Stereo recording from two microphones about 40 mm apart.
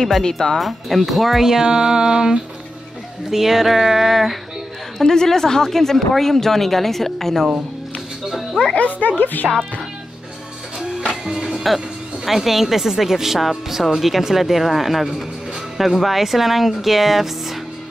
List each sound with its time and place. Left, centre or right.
0.2 s a woman's voice: centre
0.6 s speech: centre
4.9 s a woman's voice: centre
8.7 s speech: left
11.2 s music: centre
12.3 s speech: centre